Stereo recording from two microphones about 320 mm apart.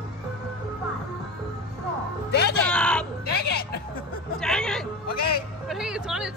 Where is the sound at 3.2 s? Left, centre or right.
Left.